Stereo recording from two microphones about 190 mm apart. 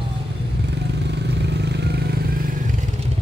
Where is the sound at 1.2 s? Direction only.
60° right (ahead or behind).